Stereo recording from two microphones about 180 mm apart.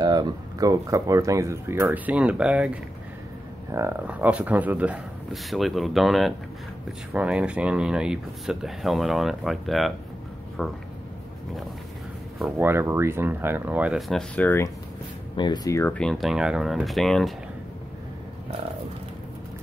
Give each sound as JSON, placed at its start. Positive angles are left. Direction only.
{"t": 0.0, "sound": "speech", "side_deg": -25}
{"t": 12.5, "sound": "speech", "side_deg": -10}
{"t": 15.3, "sound": "speech", "side_deg": 25}